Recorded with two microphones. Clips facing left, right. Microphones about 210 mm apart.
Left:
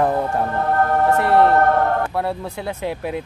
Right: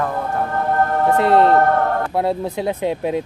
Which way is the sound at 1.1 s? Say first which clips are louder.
Right 3 dB; 20° right (ahead or behind).